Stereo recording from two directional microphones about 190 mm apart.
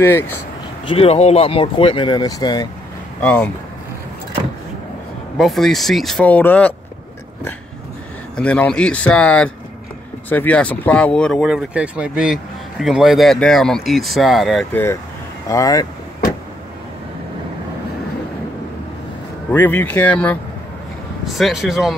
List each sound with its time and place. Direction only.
0.8 s speech: 30° left (ahead or behind)
3.2 s speech: 5° left (ahead or behind)
5.4 s speech: centre (ahead or behind)
8.4 s speech: 5° left (ahead or behind)
19.5 s speech: 10° left (ahead or behind)